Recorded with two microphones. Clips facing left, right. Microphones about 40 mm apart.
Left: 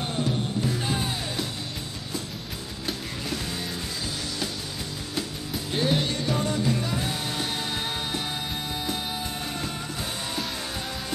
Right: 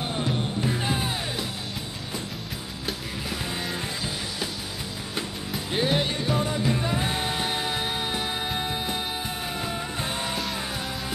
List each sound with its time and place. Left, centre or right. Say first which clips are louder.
5.7 s music: right 1 dB; centre
6.8 s music: right 2 dB; right